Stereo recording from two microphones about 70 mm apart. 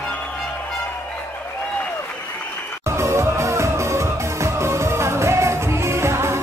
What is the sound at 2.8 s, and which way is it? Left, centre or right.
Music, right.